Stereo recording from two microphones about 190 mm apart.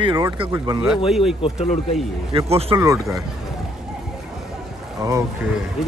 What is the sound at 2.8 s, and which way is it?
Speech, 15° right (ahead or behind).